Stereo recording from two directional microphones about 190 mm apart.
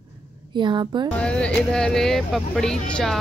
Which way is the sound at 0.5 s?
25° right (ahead or behind).